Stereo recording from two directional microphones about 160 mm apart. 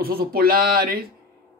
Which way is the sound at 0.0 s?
70° right (ahead or behind).